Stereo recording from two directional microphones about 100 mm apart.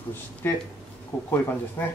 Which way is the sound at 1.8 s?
30° left (ahead or behind).